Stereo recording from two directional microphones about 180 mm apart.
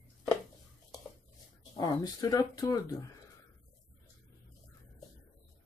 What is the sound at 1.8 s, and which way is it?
Speech, 20° left (ahead or behind).